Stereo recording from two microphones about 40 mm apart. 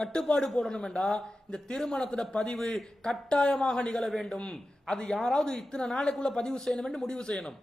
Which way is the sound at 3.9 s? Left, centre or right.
Centre.